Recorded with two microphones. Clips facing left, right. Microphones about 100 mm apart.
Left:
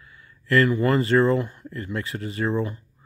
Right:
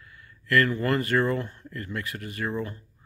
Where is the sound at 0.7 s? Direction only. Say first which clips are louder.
Left 5 dB; 20° left (ahead or behind).